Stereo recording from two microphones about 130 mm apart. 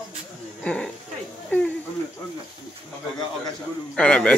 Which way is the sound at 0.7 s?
10° left (ahead or behind).